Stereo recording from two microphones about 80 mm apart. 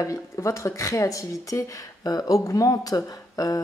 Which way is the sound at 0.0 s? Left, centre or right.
Left.